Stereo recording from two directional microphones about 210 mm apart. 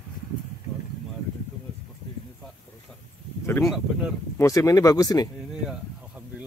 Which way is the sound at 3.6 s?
Centre (ahead or behind).